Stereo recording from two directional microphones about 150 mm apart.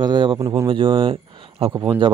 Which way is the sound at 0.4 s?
20° right (ahead or behind).